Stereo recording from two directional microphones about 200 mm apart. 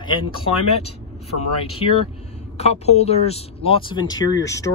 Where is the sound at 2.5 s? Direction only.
30° left (ahead or behind); by 4.7 s 15° left (ahead or behind).